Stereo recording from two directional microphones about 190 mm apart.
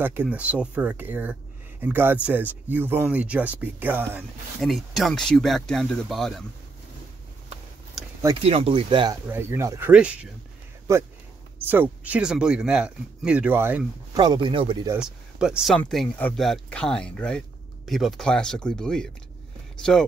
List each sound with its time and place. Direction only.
0.0 s speech: 10° right (ahead or behind)
8.4 s speech: 30° right (ahead or behind)
9.3 s speech: 10° right (ahead or behind)
14.2 s speech: 25° right (ahead or behind)
14.9 s speech: 5° right (ahead or behind)